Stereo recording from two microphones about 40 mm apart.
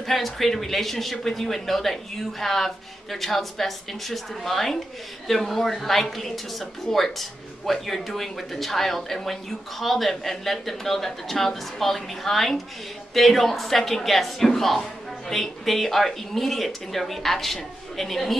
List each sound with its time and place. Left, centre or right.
0.0 s speech: centre